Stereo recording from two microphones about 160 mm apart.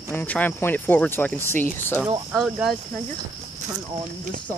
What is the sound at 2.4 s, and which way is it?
Speech, centre (ahead or behind).